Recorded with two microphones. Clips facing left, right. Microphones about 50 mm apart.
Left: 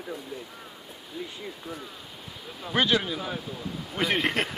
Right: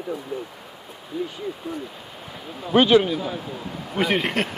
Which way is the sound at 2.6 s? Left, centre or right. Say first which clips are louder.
Right 9 dB; right.